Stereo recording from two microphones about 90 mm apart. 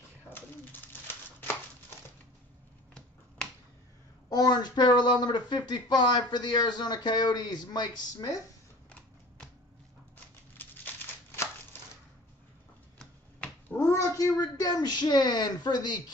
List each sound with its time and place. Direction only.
0.3 s pigeon: 20° left (ahead or behind)
4.3 s speech: 50° left (ahead or behind)
10.6 s crumpling: 20° left (ahead or behind)
13.0 s a sound: 15° left (ahead or behind)
13.7 s speech: 35° left (ahead or behind); by 16.0 s 55° left (ahead or behind)